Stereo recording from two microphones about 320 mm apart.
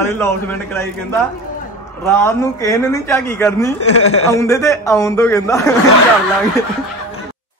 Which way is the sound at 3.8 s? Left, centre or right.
Left.